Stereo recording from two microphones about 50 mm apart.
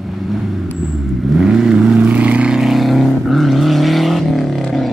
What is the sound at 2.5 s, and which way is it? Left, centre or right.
Vehicle, centre.